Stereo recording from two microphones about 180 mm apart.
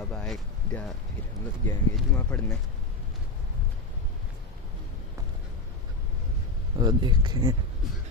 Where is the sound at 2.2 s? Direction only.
5° left (ahead or behind).